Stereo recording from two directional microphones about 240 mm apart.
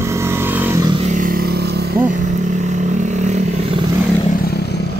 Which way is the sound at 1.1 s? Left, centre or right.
Right.